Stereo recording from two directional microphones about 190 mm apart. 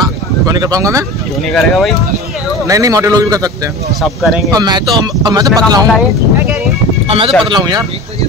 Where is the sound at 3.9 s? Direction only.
Centre (ahead or behind).